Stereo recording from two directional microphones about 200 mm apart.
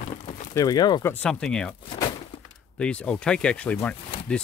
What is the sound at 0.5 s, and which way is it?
Speech, 20° left (ahead or behind).